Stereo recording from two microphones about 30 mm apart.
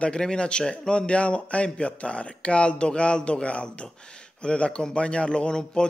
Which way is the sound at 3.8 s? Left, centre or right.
Left.